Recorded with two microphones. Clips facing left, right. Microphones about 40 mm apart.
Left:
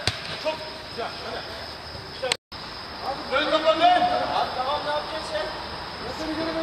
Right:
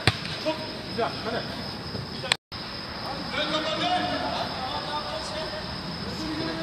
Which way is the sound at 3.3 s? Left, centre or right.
Centre.